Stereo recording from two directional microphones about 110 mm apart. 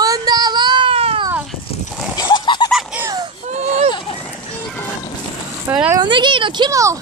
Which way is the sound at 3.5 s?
90° right.